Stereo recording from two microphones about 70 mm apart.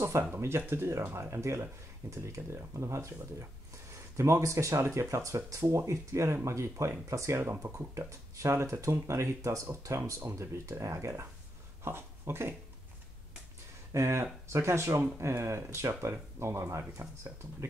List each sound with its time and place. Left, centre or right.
0.0 s speech: right
13.9 s speech: right